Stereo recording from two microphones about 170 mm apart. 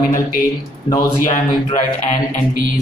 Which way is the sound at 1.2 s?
50° left (ahead or behind).